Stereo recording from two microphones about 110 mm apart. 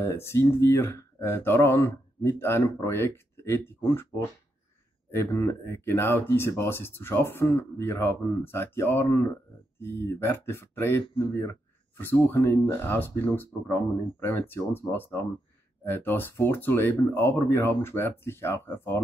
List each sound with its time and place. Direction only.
0.0 s speech: 25° left (ahead or behind)
5.1 s speech: 25° left (ahead or behind)